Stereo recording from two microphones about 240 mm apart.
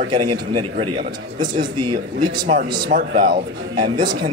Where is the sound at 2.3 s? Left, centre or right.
Centre.